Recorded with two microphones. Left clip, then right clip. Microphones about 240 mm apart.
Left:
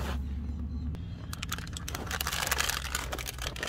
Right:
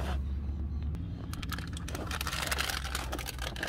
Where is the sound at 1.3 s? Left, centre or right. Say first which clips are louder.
Left 3 dB; left.